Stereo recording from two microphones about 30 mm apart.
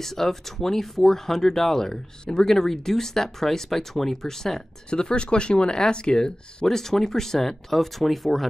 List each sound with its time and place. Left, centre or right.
0.0 s speech: centre
4.8 s speech: left; by 8.5 s centre